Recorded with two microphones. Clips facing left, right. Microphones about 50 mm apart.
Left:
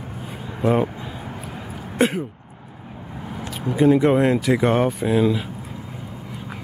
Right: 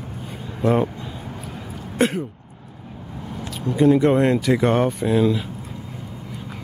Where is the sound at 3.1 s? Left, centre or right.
Centre.